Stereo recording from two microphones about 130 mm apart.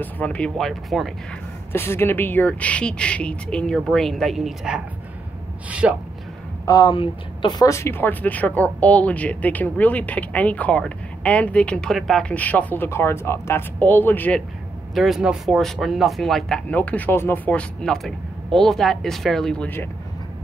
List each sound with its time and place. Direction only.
0.0 s speech: 10° left (ahead or behind)
1.7 s speech: 20° left (ahead or behind); by 4.8 s 5° right (ahead or behind)
5.7 s a sound: 10° right (ahead or behind)
6.6 s speech: 30° left (ahead or behind); by 14.4 s 15° left (ahead or behind)
15.0 s speech: centre (ahead or behind); by 19.9 s 15° left (ahead or behind)